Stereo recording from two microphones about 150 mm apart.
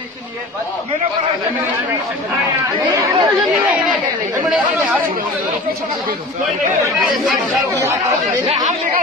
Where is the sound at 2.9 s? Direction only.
20° right (ahead or behind).